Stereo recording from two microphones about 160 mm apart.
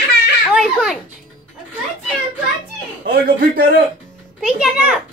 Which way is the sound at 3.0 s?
65° right (ahead or behind).